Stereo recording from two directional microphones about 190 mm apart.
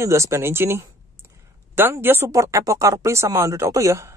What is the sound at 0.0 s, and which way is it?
Speech, 15° right (ahead or behind).